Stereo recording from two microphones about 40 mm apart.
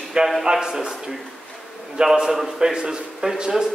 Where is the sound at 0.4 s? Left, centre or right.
Centre.